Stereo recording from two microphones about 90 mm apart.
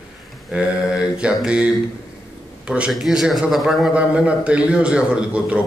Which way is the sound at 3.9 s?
15° right (ahead or behind).